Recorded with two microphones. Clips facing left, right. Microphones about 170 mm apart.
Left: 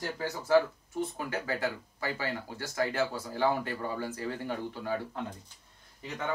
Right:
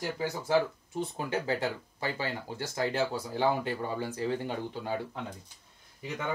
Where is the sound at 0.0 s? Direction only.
15° right (ahead or behind).